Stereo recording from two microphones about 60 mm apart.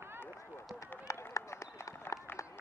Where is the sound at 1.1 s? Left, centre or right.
Left.